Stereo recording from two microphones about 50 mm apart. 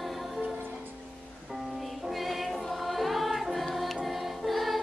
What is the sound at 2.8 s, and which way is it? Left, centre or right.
Music, centre.